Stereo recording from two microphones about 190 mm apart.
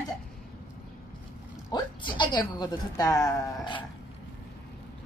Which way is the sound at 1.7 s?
25° left (ahead or behind).